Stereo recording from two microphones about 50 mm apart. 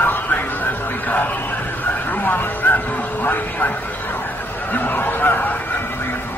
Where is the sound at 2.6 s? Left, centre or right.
Left.